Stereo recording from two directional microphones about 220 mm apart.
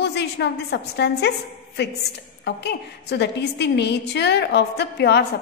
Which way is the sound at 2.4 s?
50° left (ahead or behind).